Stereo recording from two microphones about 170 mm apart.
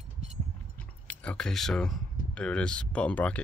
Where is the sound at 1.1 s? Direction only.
5° left (ahead or behind).